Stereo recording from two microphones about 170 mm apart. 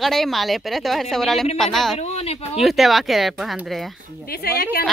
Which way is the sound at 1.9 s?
40° left (ahead or behind).